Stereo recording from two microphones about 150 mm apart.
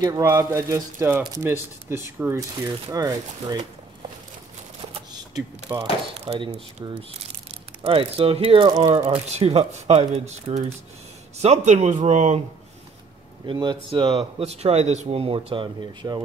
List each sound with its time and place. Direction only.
0.0 s speech: 20° right (ahead or behind)
5.3 s speech: 25° right (ahead or behind)
6.1 s speech: 40° right (ahead or behind)
6.8 s speech: 25° right (ahead or behind)
7.8 s speech: 40° right (ahead or behind)
13.5 s speech: 30° right (ahead or behind)
14.4 s speech: 45° right (ahead or behind)